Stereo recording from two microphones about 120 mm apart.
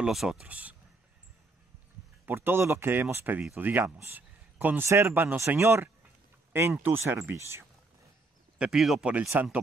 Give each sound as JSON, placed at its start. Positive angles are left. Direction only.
{"t": 0.0, "sound": "speech", "side_deg": -5}
{"t": 2.2, "sound": "speech", "side_deg": -20}
{"t": 8.5, "sound": "speech", "side_deg": -5}
{"t": 9.2, "sound": "speech", "side_deg": -15}